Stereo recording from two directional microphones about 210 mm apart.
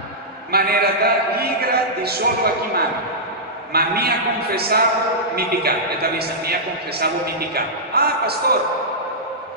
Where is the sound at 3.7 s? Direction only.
45° right (ahead or behind).